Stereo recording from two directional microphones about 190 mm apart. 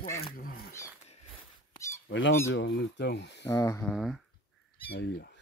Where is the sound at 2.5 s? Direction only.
65° left (ahead or behind).